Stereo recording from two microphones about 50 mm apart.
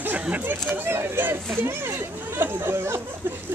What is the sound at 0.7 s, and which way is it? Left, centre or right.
Speech, right.